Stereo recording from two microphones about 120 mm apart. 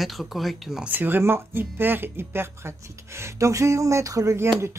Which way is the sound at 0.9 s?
15° right (ahead or behind).